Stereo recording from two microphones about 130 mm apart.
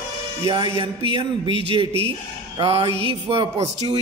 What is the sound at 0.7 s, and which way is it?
A man's voice, 45° right (ahead or behind).